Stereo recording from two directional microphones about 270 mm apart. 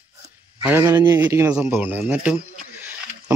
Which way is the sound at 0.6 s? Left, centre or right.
Centre.